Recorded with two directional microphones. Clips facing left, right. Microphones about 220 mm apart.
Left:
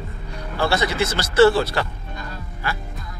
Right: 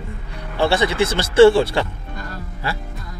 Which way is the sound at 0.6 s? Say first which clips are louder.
Right 4 dB; 30° right (ahead or behind).